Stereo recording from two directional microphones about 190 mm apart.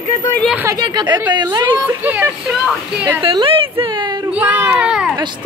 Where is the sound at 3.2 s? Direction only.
25° right (ahead or behind).